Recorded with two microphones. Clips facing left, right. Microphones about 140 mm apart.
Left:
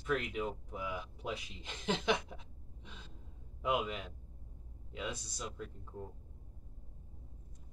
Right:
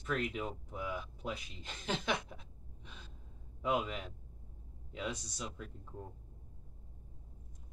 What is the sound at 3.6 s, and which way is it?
Speech, 5° left (ahead or behind).